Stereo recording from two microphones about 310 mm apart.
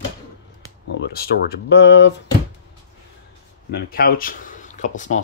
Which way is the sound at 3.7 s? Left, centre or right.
Left.